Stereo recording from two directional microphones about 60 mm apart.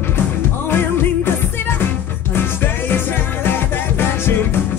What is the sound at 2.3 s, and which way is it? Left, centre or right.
Music, left.